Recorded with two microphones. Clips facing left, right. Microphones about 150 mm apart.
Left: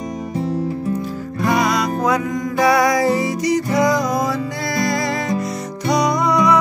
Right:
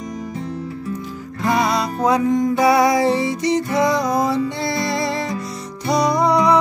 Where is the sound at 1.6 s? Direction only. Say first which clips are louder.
Left 1 dB; 30° right (ahead or behind).